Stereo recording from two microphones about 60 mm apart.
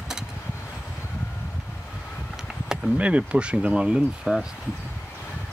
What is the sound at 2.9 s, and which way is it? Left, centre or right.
Speech, right.